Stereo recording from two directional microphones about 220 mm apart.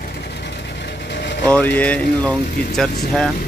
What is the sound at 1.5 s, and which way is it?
Speech, 5° left (ahead or behind).